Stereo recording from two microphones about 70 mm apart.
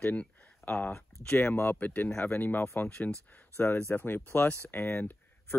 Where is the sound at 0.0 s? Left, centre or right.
Left.